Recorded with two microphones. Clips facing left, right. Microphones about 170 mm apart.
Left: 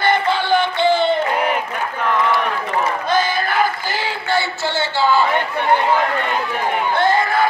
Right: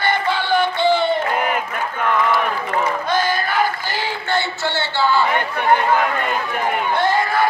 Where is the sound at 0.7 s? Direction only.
20° left (ahead or behind).